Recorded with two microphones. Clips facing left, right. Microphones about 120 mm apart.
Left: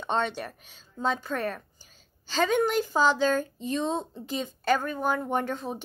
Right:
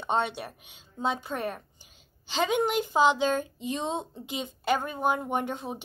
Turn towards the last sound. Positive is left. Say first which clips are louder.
# left 2 dB
turn(degrees=-15)  # may be behind; listen again after turning